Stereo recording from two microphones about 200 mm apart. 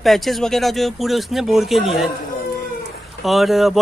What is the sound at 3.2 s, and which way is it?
Speech, centre (ahead or behind).